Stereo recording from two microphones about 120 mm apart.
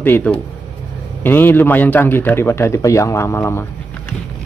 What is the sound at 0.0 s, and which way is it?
Speech, 15° left (ahead or behind).